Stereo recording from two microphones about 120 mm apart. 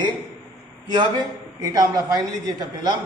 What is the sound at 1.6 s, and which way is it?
A man's voice, 30° right (ahead or behind).